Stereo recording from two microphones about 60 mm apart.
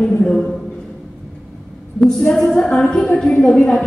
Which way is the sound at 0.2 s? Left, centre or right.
Centre.